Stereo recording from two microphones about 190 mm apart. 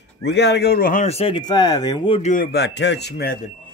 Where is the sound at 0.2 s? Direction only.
60° left (ahead or behind).